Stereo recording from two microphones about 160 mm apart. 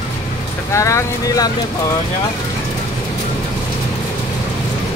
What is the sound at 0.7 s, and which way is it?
Speech, 20° left (ahead or behind).